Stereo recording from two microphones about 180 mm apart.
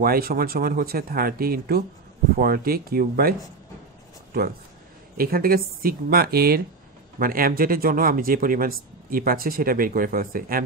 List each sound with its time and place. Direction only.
0.0 s speech: 55° right (ahead or behind)
5.1 s speech: 55° right (ahead or behind)